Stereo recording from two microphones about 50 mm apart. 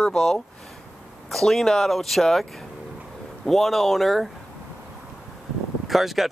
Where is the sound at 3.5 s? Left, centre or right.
Centre.